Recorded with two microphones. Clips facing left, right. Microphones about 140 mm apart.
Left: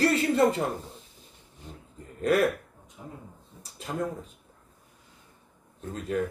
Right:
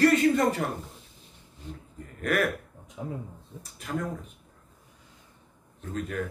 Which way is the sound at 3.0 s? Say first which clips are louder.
Right 8 dB; 90° right.